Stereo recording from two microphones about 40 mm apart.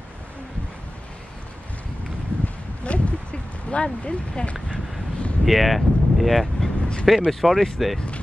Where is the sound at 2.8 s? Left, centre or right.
Left.